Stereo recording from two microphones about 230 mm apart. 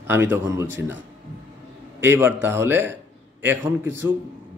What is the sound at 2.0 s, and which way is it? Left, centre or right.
Speech, centre.